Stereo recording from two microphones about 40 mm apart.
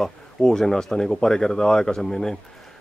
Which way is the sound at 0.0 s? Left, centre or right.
Centre.